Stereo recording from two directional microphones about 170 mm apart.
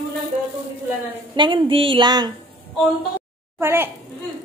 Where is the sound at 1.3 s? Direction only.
30° right (ahead or behind).